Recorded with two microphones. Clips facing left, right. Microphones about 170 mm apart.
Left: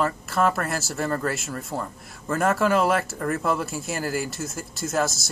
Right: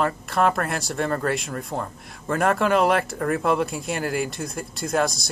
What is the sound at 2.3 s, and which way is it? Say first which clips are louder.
A man's voice: right 1 dB; 5° left (ahead or behind).